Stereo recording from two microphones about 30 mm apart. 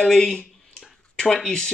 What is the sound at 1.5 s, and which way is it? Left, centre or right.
Speech, left.